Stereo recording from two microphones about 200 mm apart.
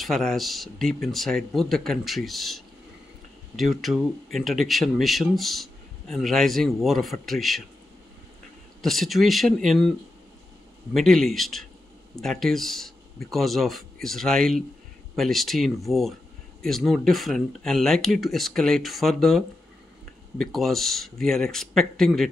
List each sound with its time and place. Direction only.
0.0 s speech: centre (ahead or behind)
8.8 s speech: centre (ahead or behind)